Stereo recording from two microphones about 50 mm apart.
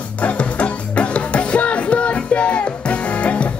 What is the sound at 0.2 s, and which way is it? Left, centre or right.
Music, left.